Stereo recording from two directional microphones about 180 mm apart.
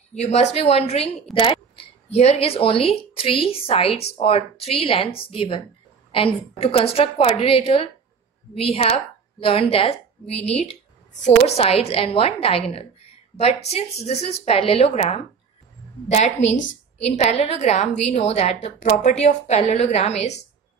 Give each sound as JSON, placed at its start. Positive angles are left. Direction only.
{"t": 0.1, "sound": "a woman's voice", "side_deg": 35}
{"t": 1.3, "sound": "a sound", "side_deg": 30}
{"t": 2.1, "sound": "a woman's voice", "side_deg": 35}
{"t": 16.3, "sound": "a woman's voice", "side_deg": 90}
{"t": 17.0, "sound": "a woman's voice", "side_deg": 35}